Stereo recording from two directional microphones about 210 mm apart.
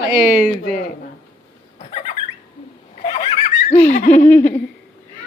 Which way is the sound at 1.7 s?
35° left (ahead or behind).